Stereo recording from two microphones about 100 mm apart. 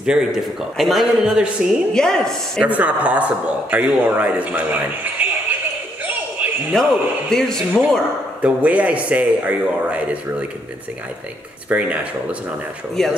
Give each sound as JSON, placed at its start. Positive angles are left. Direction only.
{"t": 0.0, "sound": "a man's voice", "side_deg": -5}
{"t": 2.0, "sound": "speech", "side_deg": 5}
{"t": 2.6, "sound": "a man's voice", "side_deg": -15}
{"t": 6.7, "sound": "speech", "side_deg": 5}
{"t": 8.4, "sound": "a man's voice", "side_deg": -15}
{"t": 11.7, "sound": "a man's voice", "side_deg": -10}
{"t": 13.0, "sound": "speech", "side_deg": 5}